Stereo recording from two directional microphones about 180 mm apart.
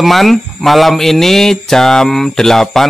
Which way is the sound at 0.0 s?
Centre (ahead or behind).